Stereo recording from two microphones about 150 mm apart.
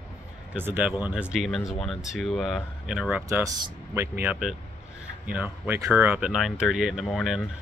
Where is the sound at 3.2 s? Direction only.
20° right (ahead or behind).